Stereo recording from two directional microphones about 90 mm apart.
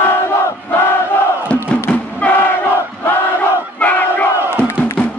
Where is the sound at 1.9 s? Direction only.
15° left (ahead or behind).